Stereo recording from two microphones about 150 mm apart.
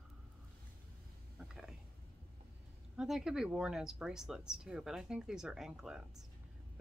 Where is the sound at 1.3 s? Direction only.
5° right (ahead or behind).